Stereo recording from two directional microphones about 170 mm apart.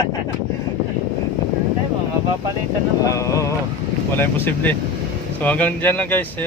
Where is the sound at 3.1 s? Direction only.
20° left (ahead or behind).